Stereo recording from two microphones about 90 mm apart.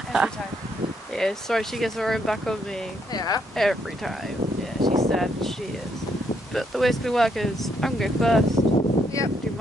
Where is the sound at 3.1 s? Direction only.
45° left (ahead or behind).